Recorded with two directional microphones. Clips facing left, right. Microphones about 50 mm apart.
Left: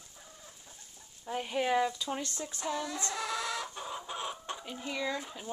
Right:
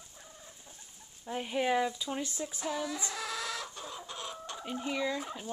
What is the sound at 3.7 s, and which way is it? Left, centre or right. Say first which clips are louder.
Chicken: left 3 dB; left.